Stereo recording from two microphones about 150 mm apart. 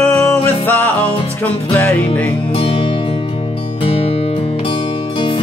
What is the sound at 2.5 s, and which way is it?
Music, 35° left (ahead or behind).